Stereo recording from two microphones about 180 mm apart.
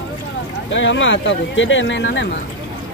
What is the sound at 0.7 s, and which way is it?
Speech, 90° left.